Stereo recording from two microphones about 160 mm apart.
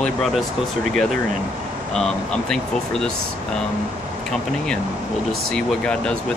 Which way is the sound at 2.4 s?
5° left (ahead or behind).